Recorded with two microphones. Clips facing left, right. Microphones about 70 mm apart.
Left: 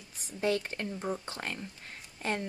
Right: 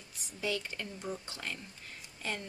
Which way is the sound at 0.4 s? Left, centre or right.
Left.